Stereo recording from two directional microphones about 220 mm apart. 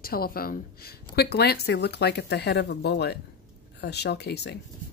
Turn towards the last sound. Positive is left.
turn(degrees=50)  # may be behind; listen again after turning